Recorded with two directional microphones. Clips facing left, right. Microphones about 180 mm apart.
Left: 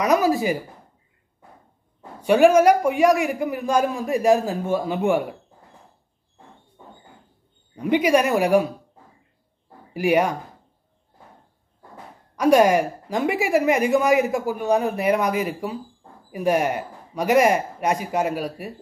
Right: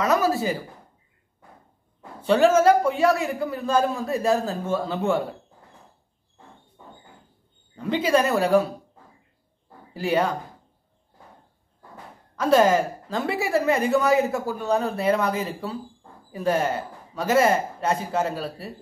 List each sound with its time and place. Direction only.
0.0 s speech: 15° left (ahead or behind)
2.2 s a woman's voice: 15° left (ahead or behind)
7.7 s a woman's voice: 15° left (ahead or behind)
9.9 s a woman's voice: 15° left (ahead or behind)
12.4 s a woman's voice: 15° left (ahead or behind)